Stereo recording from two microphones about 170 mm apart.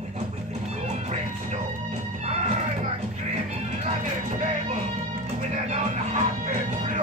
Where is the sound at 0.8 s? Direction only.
40° right (ahead or behind).